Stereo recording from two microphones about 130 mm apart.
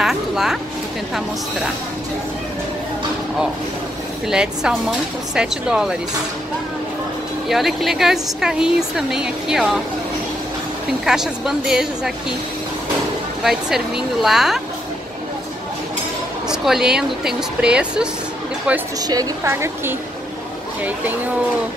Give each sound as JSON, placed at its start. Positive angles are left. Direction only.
{"t": 0.0, "sound": "a sound", "side_deg": -5}
{"t": 4.3, "sound": "speech", "side_deg": -5}
{"t": 7.4, "sound": "speech", "side_deg": 0}
{"t": 11.1, "sound": "speech", "side_deg": -5}
{"t": 13.4, "sound": "speech", "side_deg": -5}
{"t": 16.4, "sound": "speech", "side_deg": -5}
{"t": 18.9, "sound": "a woman's voice", "side_deg": -30}